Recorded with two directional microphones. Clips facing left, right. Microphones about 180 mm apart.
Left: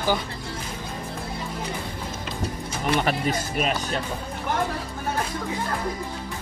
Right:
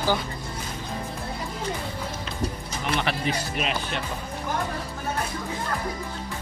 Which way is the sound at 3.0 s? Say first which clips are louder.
Left 2 dB; 45° left (ahead or behind).